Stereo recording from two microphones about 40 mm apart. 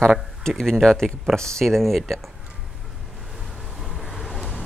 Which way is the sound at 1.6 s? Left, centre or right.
Centre.